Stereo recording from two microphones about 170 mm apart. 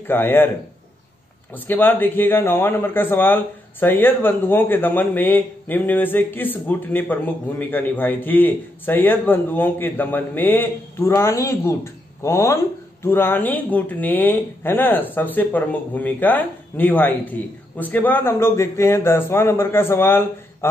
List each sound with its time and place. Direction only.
0.0 s a man's voice: 10° left (ahead or behind)
1.5 s a man's voice: 10° left (ahead or behind)